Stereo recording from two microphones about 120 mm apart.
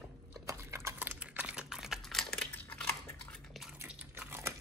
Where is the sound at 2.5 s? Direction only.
15° left (ahead or behind).